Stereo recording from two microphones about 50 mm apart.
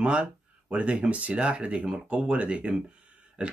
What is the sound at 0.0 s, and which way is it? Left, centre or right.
Speech, right.